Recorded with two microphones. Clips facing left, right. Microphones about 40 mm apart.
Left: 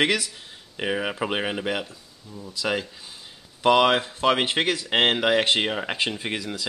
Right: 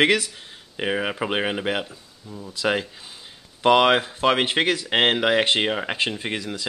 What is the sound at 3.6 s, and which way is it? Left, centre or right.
Speech, centre.